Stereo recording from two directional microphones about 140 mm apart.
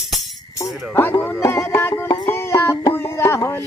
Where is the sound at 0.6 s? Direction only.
15° left (ahead or behind).